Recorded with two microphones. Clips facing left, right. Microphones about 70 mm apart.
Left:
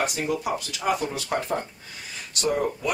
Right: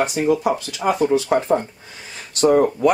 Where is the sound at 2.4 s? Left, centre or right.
Right.